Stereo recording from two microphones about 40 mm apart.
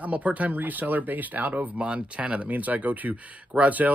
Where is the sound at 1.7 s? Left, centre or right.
Right.